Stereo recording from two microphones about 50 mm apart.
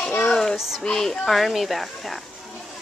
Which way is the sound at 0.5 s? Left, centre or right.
Centre.